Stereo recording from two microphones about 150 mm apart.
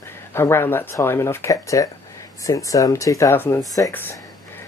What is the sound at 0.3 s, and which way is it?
Speech, 15° left (ahead or behind).